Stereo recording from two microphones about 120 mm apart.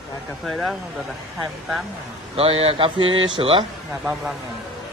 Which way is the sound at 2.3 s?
50° right (ahead or behind).